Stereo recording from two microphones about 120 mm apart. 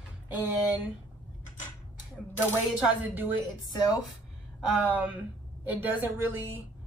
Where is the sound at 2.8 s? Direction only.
15° right (ahead or behind).